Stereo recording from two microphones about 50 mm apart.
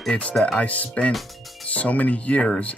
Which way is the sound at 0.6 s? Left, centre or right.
Left.